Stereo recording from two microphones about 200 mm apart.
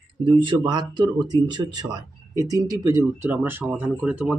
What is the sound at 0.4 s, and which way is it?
Speech, 25° right (ahead or behind).